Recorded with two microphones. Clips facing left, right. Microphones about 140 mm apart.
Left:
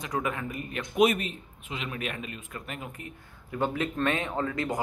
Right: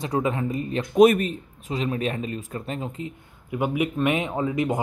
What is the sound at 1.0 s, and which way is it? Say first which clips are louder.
Speech: right 7 dB; 45° right (ahead or behind).